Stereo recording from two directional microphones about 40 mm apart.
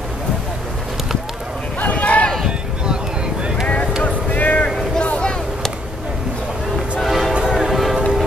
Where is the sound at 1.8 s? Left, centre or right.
Left.